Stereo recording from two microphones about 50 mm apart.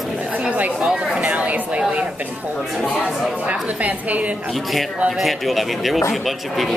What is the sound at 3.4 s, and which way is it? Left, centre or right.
Speech, right.